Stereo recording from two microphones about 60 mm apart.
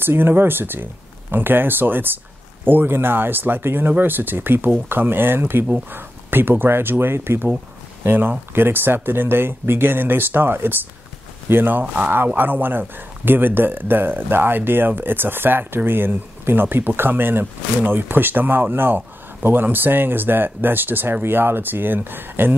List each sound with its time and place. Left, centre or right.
0.0 s speech: right